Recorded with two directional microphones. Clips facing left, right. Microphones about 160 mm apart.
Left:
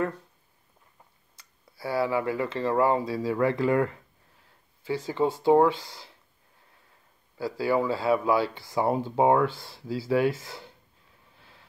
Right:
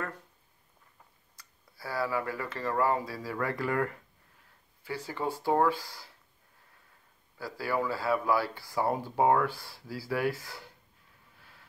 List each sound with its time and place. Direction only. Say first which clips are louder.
1.8 s speech: left 6 dB; 25° left (ahead or behind)
7.3 s speech: left 6 dB; 25° left (ahead or behind)